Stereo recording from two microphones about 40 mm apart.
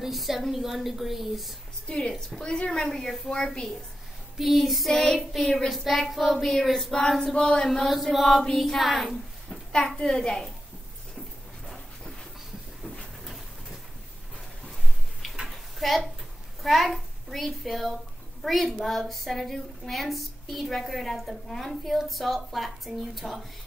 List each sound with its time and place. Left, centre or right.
0.0 s a woman's voice: centre
1.9 s a woman's voice: centre
4.4 s a woman's voice: centre
9.5 s a sound: centre
10.0 s a woman's voice: centre
13.2 s pigeon: centre
15.4 s a sound: centre
16.6 s a child's voice: centre